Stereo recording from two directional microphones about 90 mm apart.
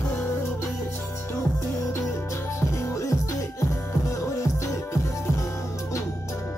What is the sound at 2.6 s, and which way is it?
Music, 35° left (ahead or behind).